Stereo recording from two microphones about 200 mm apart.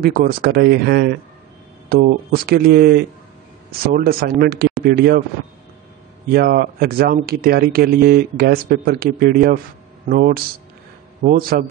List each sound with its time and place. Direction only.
0.0 s speech: 50° right (ahead or behind)
6.3 s speech: 50° right (ahead or behind)